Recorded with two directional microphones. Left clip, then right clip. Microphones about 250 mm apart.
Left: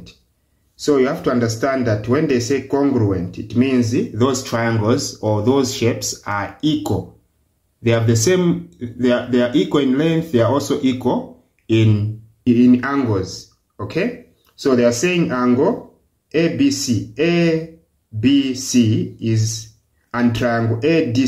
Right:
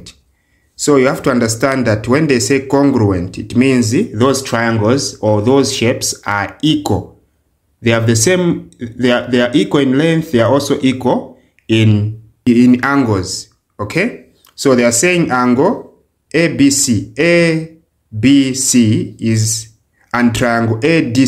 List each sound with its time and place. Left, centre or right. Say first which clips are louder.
0.8 s speech: right 5 dB; right
12.4 s speech: right 4 dB; right